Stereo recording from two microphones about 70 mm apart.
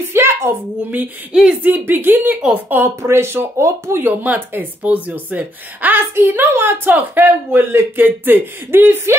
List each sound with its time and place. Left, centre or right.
0.1 s a sound: right
1.3 s speech: centre
1.6 s speech: right
3.0 s speech: right
4.0 s speech: right